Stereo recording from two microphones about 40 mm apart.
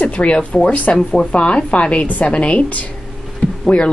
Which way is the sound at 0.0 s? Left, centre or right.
Left.